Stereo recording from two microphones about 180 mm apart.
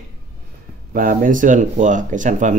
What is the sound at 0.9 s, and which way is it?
Speech, 50° right (ahead or behind).